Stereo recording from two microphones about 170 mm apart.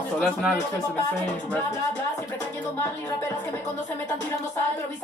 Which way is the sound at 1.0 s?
15° left (ahead or behind).